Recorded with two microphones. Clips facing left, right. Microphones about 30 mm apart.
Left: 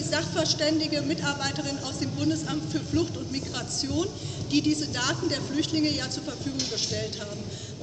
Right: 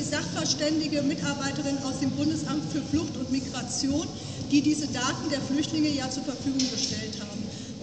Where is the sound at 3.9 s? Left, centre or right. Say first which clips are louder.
Even; left.